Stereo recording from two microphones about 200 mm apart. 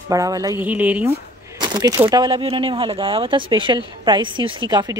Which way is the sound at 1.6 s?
20° right (ahead or behind).